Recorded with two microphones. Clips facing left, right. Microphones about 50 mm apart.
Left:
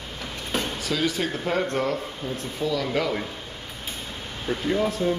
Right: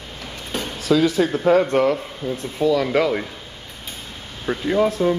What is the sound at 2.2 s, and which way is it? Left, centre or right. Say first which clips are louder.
Speech: right 7 dB; centre.